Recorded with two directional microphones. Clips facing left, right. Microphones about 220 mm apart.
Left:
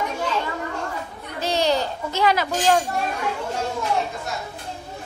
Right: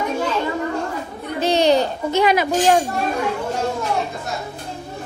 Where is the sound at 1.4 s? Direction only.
20° right (ahead or behind).